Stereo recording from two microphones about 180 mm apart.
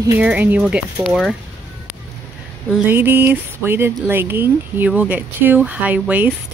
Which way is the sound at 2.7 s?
10° right (ahead or behind).